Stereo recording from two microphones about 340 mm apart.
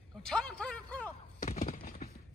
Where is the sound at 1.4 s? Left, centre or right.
Left.